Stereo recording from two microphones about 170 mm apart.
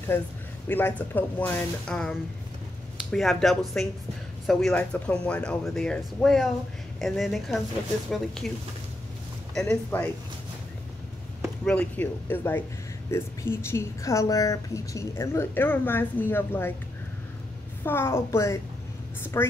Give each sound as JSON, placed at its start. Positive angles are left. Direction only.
{"t": 0.7, "sound": "a woman's voice", "side_deg": 10}
{"t": 11.6, "sound": "a woman's voice", "side_deg": 10}
{"t": 17.8, "sound": "a woman's voice", "side_deg": 15}